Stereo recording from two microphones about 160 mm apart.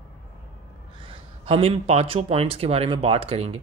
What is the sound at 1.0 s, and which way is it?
Speech, 35° right (ahead or behind).